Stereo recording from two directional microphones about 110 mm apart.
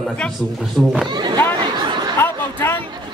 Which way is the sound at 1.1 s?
40° right (ahead or behind).